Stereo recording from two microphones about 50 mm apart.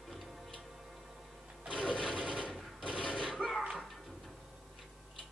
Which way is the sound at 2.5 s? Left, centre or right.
Centre.